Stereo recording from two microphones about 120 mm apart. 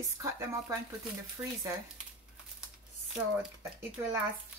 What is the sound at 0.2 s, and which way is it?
Speech, 25° right (ahead or behind).